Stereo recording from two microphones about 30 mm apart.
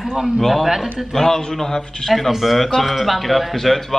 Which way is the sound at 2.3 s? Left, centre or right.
Centre.